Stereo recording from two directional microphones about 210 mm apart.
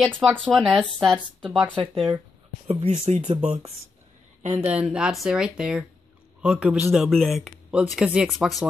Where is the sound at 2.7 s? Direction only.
30° right (ahead or behind).